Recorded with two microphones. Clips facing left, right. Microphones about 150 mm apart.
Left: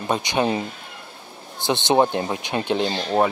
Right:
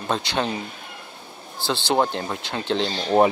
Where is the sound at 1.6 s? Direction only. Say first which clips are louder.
Left 3 dB; 20° left (ahead or behind).